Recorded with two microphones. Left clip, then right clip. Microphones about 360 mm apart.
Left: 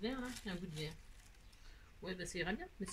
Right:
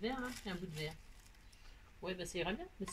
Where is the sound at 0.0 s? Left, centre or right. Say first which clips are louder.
Right 2 dB; centre.